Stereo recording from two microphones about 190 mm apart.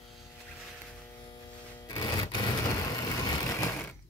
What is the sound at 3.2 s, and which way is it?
Vehicle, 15° left (ahead or behind).